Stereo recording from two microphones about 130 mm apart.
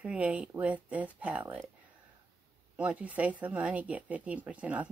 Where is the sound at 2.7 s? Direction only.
10° right (ahead or behind).